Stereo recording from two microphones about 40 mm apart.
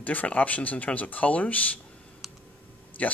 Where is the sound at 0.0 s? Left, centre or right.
Left.